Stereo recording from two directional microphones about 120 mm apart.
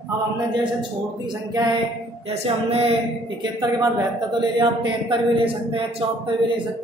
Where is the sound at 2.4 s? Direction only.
55° right (ahead or behind).